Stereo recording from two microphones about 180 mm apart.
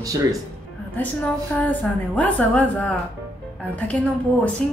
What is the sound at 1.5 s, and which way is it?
A woman's voice, 10° left (ahead or behind).